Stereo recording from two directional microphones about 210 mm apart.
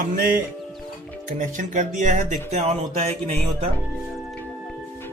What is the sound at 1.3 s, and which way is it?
Speech, 35° right (ahead or behind).